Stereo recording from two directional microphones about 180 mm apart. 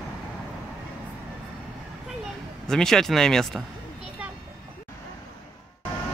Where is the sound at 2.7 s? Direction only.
5° left (ahead or behind).